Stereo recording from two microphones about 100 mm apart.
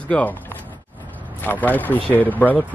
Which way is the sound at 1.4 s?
15° left (ahead or behind).